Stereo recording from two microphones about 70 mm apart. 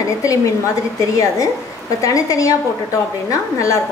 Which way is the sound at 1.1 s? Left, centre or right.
Left.